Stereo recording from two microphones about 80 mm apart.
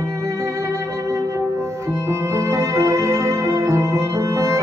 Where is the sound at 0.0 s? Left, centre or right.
Right.